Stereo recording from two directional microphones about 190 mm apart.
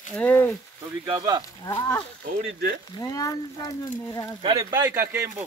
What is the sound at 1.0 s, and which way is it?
Speech, 20° right (ahead or behind).